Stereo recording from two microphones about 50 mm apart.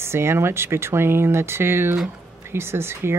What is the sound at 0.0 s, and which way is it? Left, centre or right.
Speech, right.